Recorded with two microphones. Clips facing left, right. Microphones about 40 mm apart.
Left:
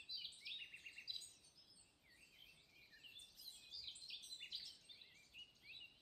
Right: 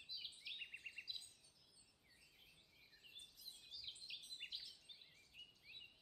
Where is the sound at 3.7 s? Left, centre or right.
Centre.